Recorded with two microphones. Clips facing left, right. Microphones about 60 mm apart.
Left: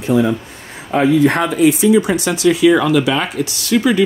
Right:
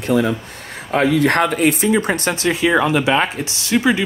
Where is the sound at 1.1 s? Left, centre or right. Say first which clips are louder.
Left 3 dB; right.